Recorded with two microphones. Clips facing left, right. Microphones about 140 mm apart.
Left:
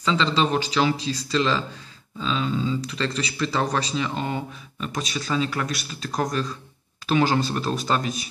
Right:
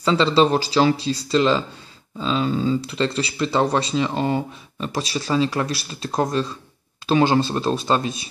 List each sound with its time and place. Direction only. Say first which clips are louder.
0.0 s speech: right 5 dB; 35° right (ahead or behind)
2.8 s speech: right 4 dB; 30° right (ahead or behind)